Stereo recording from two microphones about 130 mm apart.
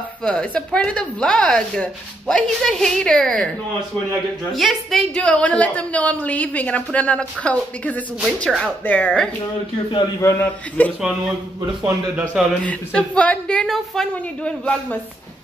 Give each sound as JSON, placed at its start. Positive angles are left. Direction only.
{"t": 0.2, "sound": "a woman's voice", "side_deg": 5}
{"t": 4.5, "sound": "a woman's voice", "side_deg": 0}
{"t": 10.2, "sound": "a man's voice", "side_deg": 20}
{"t": 11.8, "sound": "speech", "side_deg": -10}
{"t": 12.6, "sound": "a woman's voice", "side_deg": 10}